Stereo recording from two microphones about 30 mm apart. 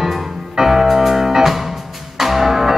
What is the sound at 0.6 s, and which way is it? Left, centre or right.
Music, centre.